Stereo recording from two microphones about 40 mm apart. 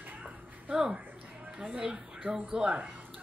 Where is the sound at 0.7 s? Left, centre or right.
Centre.